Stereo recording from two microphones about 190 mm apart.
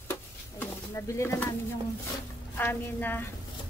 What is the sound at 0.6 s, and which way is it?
Speech, 15° left (ahead or behind).